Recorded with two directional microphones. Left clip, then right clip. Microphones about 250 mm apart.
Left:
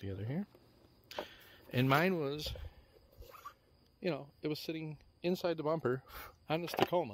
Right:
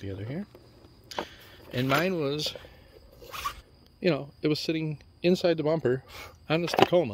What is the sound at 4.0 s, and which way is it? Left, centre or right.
Speech, centre.